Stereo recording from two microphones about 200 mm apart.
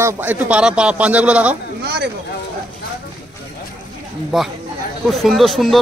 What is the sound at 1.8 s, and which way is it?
Speech, 55° right (ahead or behind).